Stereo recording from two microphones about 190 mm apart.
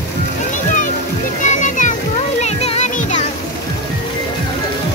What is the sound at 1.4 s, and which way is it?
Music, 40° left (ahead or behind).